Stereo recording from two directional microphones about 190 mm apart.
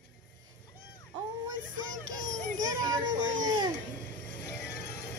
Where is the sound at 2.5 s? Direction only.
20° right (ahead or behind).